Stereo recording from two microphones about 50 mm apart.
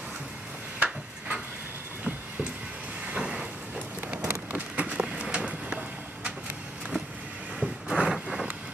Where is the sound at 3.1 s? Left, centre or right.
Right.